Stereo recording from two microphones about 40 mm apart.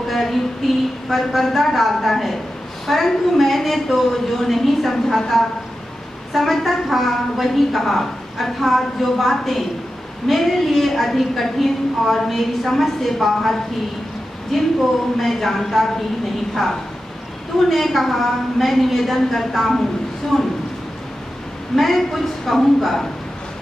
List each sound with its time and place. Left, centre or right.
0.0 s a woman's voice: centre
6.3 s a woman's voice: centre
17.6 s a woman's voice: centre
21.7 s a woman's voice: centre